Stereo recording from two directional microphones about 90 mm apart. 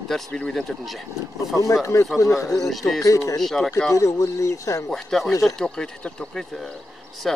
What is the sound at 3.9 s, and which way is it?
Speech, 35° left (ahead or behind).